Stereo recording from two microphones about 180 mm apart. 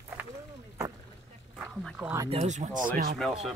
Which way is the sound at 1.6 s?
5° right (ahead or behind).